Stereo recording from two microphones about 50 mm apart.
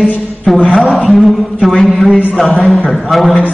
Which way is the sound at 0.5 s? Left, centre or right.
Centre.